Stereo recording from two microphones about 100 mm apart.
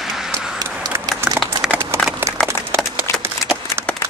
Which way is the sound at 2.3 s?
90° right.